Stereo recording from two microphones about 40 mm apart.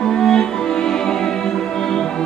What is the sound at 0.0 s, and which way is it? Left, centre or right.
Music, centre.